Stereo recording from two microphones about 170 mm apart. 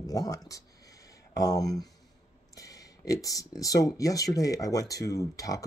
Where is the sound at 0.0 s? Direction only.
20° left (ahead or behind).